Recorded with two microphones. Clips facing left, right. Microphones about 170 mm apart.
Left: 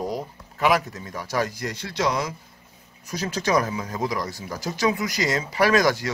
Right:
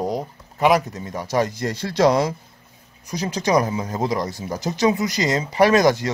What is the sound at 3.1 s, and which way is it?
Speech, 15° right (ahead or behind).